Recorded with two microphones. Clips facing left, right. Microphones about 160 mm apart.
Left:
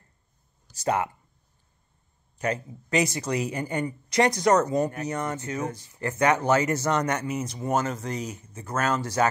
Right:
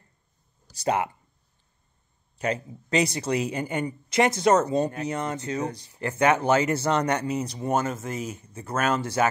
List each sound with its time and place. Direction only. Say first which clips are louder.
2.3 s speech: even; 30° right (ahead or behind)